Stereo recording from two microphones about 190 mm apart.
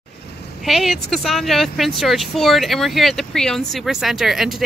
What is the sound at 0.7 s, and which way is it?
Speech, centre (ahead or behind).